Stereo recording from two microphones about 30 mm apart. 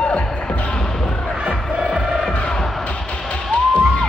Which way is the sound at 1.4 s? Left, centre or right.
Right.